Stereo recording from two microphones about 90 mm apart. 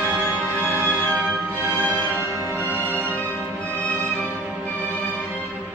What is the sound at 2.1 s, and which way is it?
Music, 30° right (ahead or behind).